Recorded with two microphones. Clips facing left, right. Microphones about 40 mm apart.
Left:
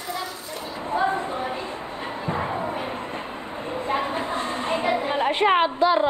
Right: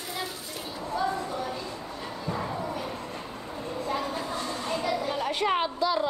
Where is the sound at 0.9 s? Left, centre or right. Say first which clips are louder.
Left 6 dB; left.